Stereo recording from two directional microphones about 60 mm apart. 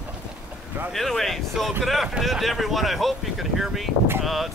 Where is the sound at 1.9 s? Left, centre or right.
Centre.